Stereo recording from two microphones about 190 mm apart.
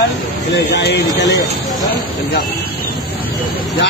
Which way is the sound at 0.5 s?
65° left (ahead or behind).